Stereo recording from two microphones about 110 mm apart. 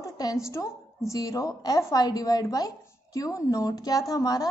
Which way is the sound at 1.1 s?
35° left (ahead or behind).